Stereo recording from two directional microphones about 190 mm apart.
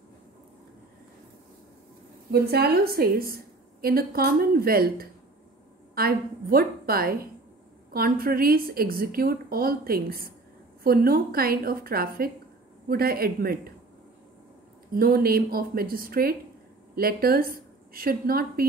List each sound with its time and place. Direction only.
2.3 s a woman's voice: 55° right (ahead or behind)
15.0 s a woman's voice: 50° right (ahead or behind)